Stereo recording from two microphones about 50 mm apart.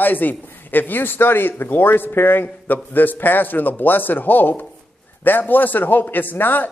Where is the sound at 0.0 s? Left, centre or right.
Left.